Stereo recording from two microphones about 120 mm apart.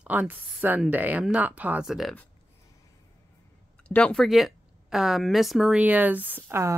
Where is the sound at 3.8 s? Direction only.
10° left (ahead or behind); by 6.7 s 20° right (ahead or behind).